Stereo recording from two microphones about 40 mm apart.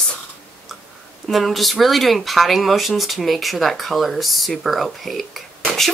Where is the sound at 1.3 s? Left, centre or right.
Centre.